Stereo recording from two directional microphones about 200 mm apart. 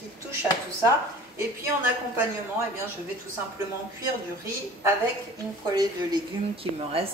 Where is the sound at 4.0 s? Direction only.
15° right (ahead or behind).